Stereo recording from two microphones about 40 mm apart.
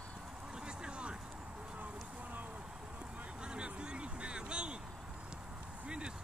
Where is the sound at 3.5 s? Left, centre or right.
Right.